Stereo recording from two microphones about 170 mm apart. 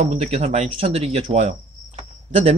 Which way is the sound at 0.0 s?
40° right (ahead or behind).